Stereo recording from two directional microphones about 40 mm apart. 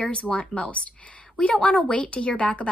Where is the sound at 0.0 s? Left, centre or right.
Left.